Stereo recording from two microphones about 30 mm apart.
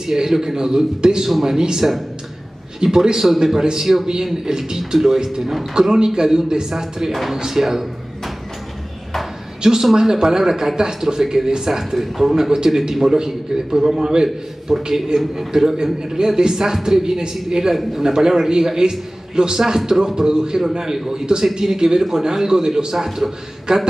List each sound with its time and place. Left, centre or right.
0.0 s a man's voice: centre
1.8 s speech: centre
2.8 s a man's voice: right
3.2 s a man's voice: centre
4.9 s speech: centre
5.6 s a man's voice: right
7.1 s speech: centre
7.3 s speech: centre
9.6 s a man's voice: right
22.9 s speech: centre